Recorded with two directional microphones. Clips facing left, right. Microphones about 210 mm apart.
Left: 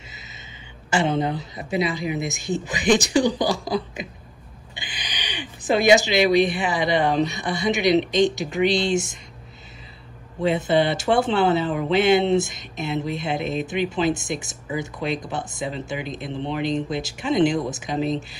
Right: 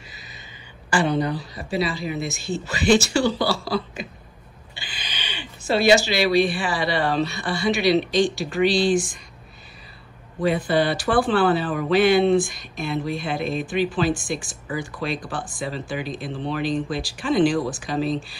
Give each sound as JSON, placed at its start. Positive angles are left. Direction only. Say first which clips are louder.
{"t": 0.8, "sound": "a woman's voice", "louder": "even", "side_deg": 25}
{"t": 10.4, "sound": "speech", "louder": "left 1 dB", "side_deg": 25}